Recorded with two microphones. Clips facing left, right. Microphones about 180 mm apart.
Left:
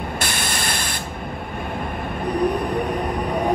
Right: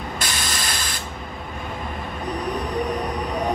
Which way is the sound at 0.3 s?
60° left (ahead or behind).